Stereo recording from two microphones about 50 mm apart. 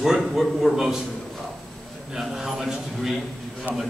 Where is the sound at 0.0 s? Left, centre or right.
Centre.